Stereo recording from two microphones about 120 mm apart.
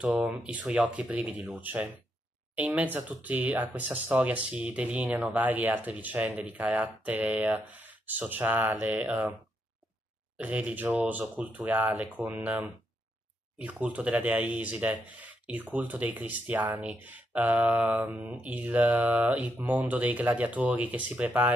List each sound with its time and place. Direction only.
0.0 s speech: 5° right (ahead or behind)
10.3 s speech: 10° right (ahead or behind)